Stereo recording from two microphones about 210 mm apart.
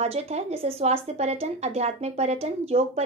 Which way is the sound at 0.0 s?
30° right (ahead or behind).